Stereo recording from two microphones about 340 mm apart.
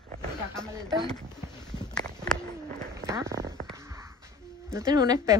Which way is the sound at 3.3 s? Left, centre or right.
Right.